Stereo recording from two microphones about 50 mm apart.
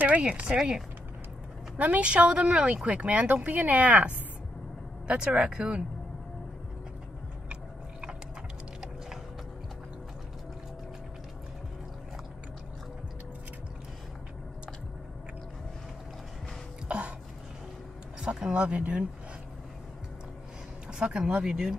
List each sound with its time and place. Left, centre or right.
0.2 s speech: right
0.6 s speech: centre
1.8 s speech: right
5.0 s speech: centre
16.8 s throat clearing: right
18.2 s speech: centre
21.0 s speech: right